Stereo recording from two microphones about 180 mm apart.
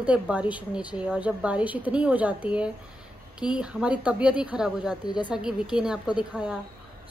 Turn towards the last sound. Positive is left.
turn(degrees=-5)  # may be behind; listen again after turning